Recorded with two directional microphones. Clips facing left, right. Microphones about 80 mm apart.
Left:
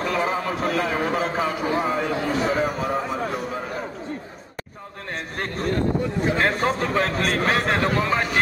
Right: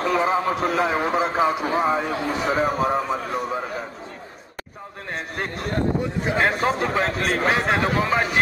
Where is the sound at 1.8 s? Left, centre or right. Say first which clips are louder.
Right 1 dB; centre.